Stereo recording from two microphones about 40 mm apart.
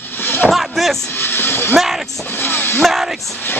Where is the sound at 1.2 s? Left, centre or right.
Left.